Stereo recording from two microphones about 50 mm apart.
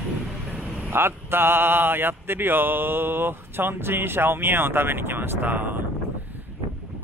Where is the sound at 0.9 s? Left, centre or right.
Right.